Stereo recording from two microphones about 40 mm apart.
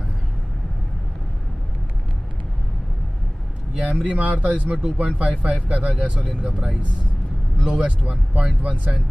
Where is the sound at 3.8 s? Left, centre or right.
Right.